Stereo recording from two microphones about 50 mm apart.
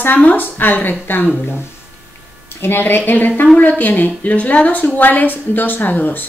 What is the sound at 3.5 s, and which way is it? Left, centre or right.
A woman's voice, left.